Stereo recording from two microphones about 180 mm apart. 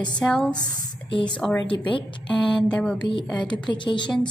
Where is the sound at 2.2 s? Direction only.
5° left (ahead or behind).